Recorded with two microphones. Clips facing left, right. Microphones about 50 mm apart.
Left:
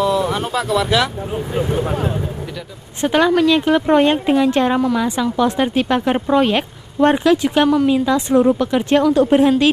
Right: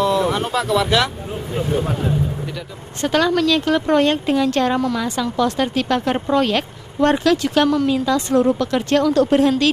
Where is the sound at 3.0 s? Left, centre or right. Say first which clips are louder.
Left 3 dB; centre.